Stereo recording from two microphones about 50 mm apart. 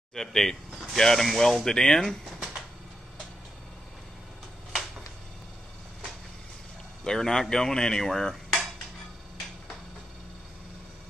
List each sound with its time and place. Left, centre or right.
0.1 s speech: centre
7.1 s speech: centre